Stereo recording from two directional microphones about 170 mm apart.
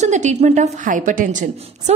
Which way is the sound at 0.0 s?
45° right (ahead or behind).